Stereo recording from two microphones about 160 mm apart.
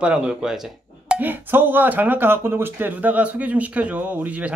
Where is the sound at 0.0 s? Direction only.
5° right (ahead or behind).